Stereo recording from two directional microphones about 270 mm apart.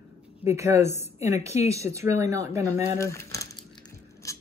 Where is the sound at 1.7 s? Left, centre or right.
Centre.